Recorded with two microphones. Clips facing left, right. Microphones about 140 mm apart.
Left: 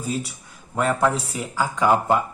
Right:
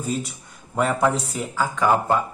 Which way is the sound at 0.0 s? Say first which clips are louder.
Right 1 dB; 5° left (ahead or behind).